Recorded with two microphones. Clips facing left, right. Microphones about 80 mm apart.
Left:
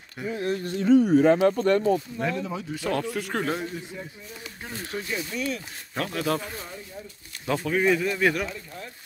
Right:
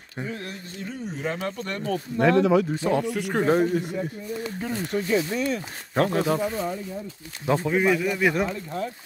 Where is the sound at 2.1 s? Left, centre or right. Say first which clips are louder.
Right 10 dB; right.